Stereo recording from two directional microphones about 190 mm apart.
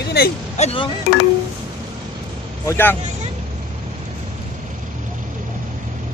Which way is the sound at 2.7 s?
10° left (ahead or behind).